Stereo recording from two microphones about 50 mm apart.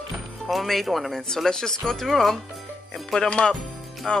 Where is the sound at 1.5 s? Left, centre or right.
Centre.